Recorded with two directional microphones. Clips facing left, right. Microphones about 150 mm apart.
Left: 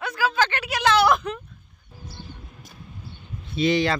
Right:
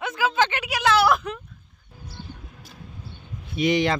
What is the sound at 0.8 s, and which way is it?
Speech, 5° right (ahead or behind).